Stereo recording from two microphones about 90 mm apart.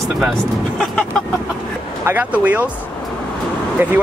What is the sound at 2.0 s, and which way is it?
Speech, 20° right (ahead or behind).